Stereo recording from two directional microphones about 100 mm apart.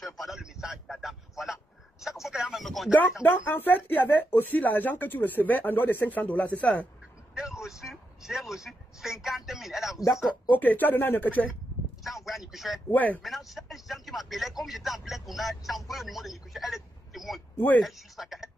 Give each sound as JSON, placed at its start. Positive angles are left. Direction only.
{"t": 0.2, "sound": "a sound", "side_deg": -5}
{"t": 3.3, "sound": "speech", "side_deg": 20}
{"t": 7.3, "sound": "a sound", "side_deg": -5}
{"t": 10.5, "sound": "speech", "side_deg": 15}
{"t": 12.0, "sound": "a sound", "side_deg": 0}
{"t": 12.9, "sound": "speech", "side_deg": 15}
{"t": 13.2, "sound": "speech", "side_deg": 0}
{"t": 17.6, "sound": "speech", "side_deg": 20}
{"t": 17.8, "sound": "speech", "side_deg": 0}